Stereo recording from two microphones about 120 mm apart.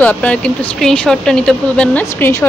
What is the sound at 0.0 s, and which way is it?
Speech, 10° left (ahead or behind).